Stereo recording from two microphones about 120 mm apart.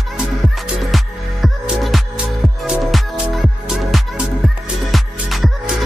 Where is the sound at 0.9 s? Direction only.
Centre (ahead or behind).